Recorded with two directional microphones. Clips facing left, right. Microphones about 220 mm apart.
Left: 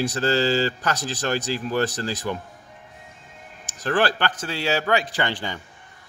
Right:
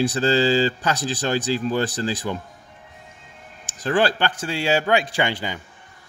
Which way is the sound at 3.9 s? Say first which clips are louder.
Right 2 dB; 15° right (ahead or behind).